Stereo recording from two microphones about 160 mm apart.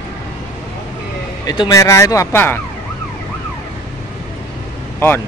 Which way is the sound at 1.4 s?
25° left (ahead or behind).